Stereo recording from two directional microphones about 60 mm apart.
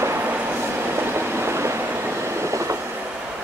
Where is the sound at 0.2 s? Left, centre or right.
Right.